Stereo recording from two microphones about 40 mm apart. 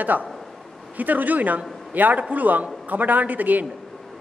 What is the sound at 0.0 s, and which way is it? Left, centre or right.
A man's voice, right.